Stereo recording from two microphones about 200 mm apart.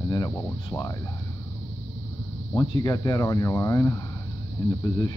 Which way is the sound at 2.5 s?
20° left (ahead or behind).